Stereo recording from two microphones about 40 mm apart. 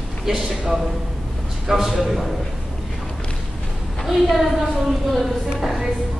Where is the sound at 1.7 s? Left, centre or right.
Centre.